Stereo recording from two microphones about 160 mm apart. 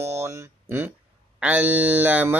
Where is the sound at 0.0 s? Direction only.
15° right (ahead or behind).